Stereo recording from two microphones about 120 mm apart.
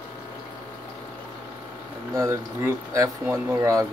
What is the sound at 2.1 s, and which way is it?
Speech, 25° right (ahead or behind).